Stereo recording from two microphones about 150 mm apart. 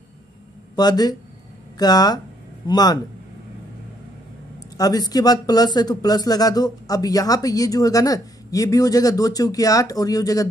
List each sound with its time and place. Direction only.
0.7 s speech: 25° left (ahead or behind)
4.7 s speech: 25° left (ahead or behind)